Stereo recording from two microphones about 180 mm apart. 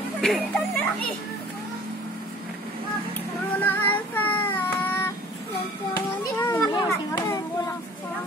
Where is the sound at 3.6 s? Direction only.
10° left (ahead or behind).